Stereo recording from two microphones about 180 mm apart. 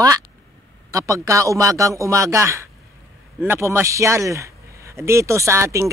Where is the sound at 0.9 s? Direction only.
15° right (ahead or behind).